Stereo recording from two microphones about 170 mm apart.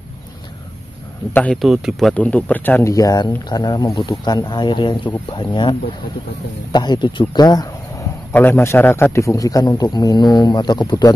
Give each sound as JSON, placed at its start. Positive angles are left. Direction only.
{"t": 1.3, "sound": "a man's voice", "side_deg": 5}
{"t": 8.3, "sound": "a man's voice", "side_deg": 10}